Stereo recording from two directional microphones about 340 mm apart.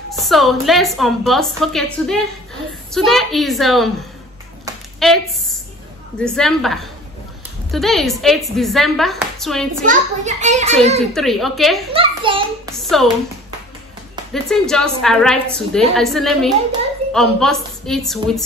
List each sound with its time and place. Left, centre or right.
0.1 s a woman's voice: centre
5.0 s a woman's voice: centre
6.2 s a woman's voice: centre
9.8 s a child's voice: right
11.1 s a woman's voice: centre
11.9 s a child's voice: centre
12.8 s speech: centre
14.3 s a woman's voice: centre